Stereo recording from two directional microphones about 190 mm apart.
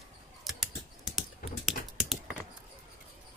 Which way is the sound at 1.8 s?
50° left (ahead or behind).